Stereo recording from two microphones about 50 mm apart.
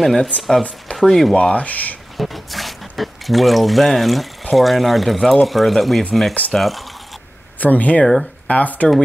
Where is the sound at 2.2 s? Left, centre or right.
Centre.